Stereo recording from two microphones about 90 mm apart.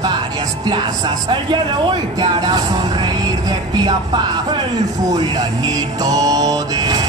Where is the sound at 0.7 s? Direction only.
55° right (ahead or behind).